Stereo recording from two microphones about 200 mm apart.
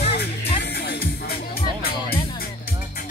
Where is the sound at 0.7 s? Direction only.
50° left (ahead or behind).